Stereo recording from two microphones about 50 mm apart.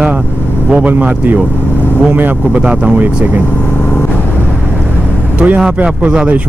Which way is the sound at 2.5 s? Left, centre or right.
Right.